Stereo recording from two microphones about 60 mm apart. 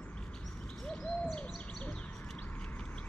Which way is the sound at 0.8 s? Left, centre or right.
Centre.